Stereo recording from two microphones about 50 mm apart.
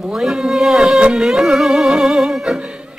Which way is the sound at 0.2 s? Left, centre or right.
Centre.